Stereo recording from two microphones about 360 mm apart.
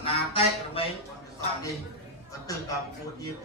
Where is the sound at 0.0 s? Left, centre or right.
Centre.